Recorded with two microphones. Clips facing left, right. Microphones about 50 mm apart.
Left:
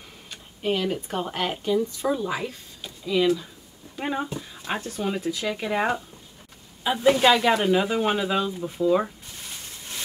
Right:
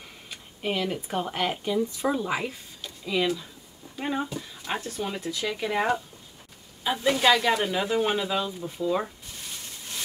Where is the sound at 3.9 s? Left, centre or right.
Centre.